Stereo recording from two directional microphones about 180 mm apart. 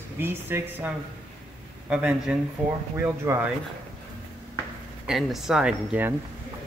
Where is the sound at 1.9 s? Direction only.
5° right (ahead or behind).